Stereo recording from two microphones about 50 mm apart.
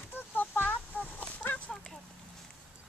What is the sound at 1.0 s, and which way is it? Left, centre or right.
Chicken, left.